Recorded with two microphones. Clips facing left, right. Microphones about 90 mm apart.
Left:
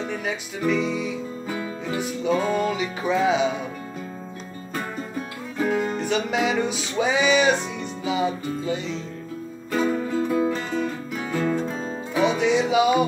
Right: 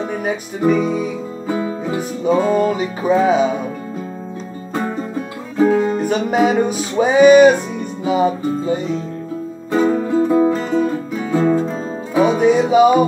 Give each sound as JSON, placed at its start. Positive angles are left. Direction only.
{"t": 0.0, "sound": "music", "side_deg": -45}
{"t": 1.5, "sound": "music", "side_deg": -20}
{"t": 2.4, "sound": "music", "side_deg": -40}
{"t": 4.7, "sound": "music", "side_deg": -25}
{"t": 9.7, "sound": "music", "side_deg": -25}
{"t": 10.5, "sound": "music", "side_deg": -5}
{"t": 11.2, "sound": "music", "side_deg": -20}
{"t": 12.1, "sound": "music", "side_deg": -35}